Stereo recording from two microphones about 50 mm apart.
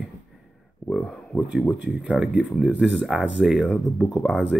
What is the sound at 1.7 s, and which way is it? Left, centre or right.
Speech, centre.